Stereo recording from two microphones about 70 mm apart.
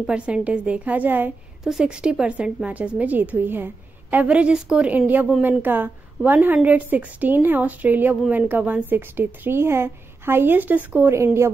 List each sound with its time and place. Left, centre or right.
0.0 s a woman's voice: centre
1.6 s a woman's voice: centre
4.9 s a woman's voice: right